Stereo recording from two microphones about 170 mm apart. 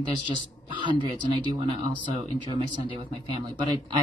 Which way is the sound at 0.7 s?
30° right (ahead or behind).